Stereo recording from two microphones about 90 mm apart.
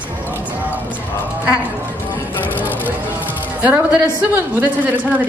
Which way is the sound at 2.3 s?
20° left (ahead or behind).